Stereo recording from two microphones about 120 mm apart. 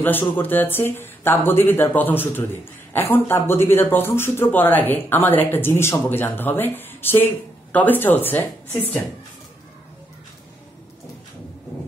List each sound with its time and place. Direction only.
0.0 s speech: 15° left (ahead or behind)